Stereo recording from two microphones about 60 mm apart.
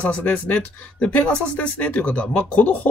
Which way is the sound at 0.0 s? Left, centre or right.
Left.